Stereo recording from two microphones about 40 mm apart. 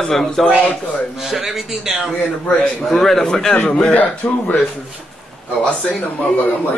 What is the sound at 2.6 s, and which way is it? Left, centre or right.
Speech, centre.